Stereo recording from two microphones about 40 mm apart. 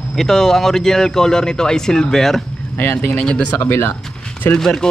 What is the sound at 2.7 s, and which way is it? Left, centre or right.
Speech, left.